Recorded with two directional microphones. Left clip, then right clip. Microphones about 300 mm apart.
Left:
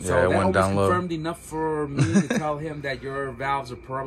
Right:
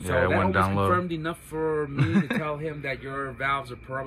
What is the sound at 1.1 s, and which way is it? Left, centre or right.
Speech, centre.